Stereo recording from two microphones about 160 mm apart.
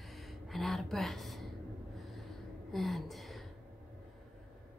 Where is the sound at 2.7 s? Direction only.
Centre (ahead or behind).